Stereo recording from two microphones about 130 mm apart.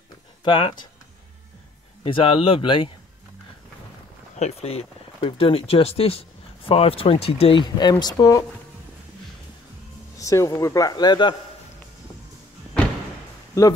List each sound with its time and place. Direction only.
0.4 s speech: 40° left (ahead or behind)
2.0 s speech: 45° left (ahead or behind)
4.4 s speech: 55° left (ahead or behind)
7.6 s speech: 35° left (ahead or behind)
10.1 s speech: 25° left (ahead or behind)
13.5 s speech: 25° left (ahead or behind)